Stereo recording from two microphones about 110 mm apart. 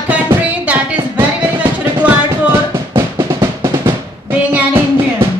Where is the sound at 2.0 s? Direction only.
20° right (ahead or behind).